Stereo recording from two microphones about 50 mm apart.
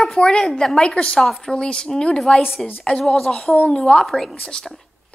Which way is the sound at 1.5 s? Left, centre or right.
Centre.